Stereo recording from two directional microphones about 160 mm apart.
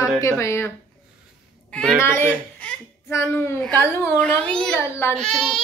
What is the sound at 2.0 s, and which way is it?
A child's voice, 15° left (ahead or behind).